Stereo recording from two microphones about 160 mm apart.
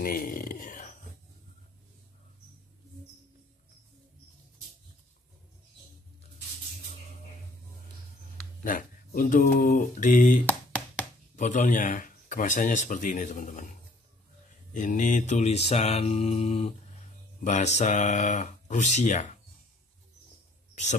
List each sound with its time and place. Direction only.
0.0 s a sound: 65° left (ahead or behind)
8.6 s speech: 60° left (ahead or behind)
10.4 s a sound: 10° left (ahead or behind)
11.3 s speech: 50° left (ahead or behind)
14.7 s mantra: 55° left (ahead or behind)
17.4 s speech: 45° left (ahead or behind)